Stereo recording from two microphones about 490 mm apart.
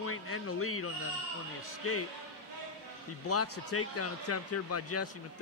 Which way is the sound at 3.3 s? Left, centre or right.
Left.